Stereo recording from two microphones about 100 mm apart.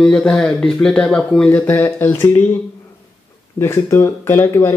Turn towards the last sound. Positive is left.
turn(degrees=25)  # may be behind; listen again after turning